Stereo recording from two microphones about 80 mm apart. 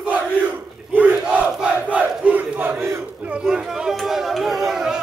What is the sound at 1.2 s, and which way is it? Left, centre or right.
Crowd, centre.